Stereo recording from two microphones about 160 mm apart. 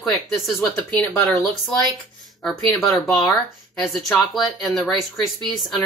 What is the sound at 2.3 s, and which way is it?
Speech, centre (ahead or behind).